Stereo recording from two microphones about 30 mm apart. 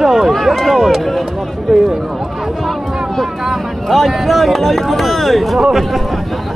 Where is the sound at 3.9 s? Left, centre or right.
Centre.